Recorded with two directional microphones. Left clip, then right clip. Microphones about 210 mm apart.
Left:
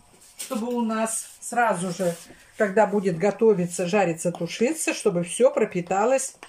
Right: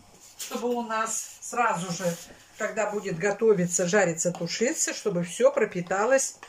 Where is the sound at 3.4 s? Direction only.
5° left (ahead or behind).